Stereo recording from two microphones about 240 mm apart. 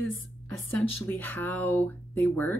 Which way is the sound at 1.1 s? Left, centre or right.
Centre.